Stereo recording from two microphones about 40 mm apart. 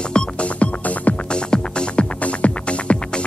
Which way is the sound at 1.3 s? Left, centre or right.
Left.